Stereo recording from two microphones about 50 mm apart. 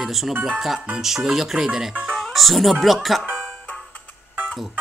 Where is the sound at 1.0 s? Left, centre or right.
Centre.